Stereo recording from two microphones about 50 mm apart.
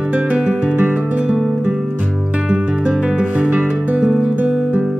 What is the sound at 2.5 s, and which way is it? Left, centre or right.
Music, right.